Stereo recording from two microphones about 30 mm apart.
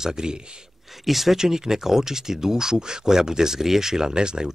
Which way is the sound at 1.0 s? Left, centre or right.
Centre.